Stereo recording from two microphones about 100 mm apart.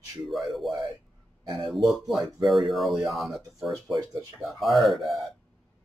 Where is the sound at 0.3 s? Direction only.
Centre (ahead or behind).